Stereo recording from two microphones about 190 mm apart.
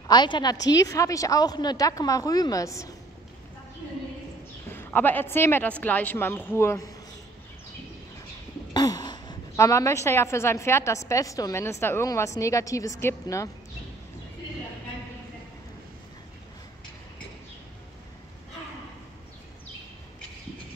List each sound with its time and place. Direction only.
0.1 s speech: 25° left (ahead or behind)
4.6 s a woman's voice: 10° left (ahead or behind)
8.7 s a woman's voice: 20° left (ahead or behind)